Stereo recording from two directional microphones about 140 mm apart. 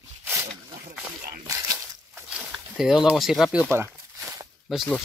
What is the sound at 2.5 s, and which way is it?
Speech, 5° right (ahead or behind).